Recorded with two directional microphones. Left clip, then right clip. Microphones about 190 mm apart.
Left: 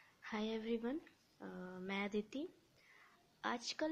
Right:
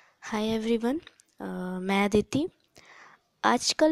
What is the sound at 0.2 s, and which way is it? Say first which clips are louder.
A woman's voice: right 14 dB; 45° right (ahead or behind).